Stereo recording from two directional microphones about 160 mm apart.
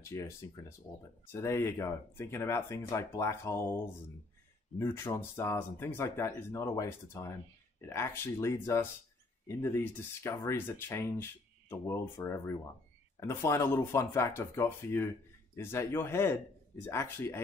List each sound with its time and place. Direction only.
0.0 s speech: 20° left (ahead or behind)